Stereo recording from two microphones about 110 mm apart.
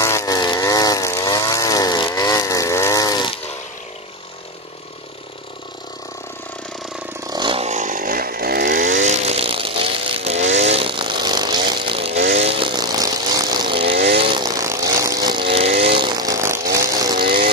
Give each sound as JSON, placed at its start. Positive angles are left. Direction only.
{"t": 0.0, "sound": "chainsaw", "side_deg": 30}
{"t": 7.2, "sound": "vehicle", "side_deg": -40}
{"t": 7.5, "sound": "a sound", "side_deg": -90}
{"t": 9.0, "sound": "chainsaw", "side_deg": -80}
{"t": 10.9, "sound": "vehicle", "side_deg": -45}
{"t": 12.1, "sound": "chainsaw", "side_deg": -65}
{"t": 12.6, "sound": "chainsaw", "side_deg": -40}
{"t": 13.7, "sound": "chainsaw", "side_deg": -55}
{"t": 14.4, "sound": "a sound", "side_deg": -30}
{"t": 15.4, "sound": "vehicle", "side_deg": -60}
{"t": 16.1, "sound": "chainsaw", "side_deg": -35}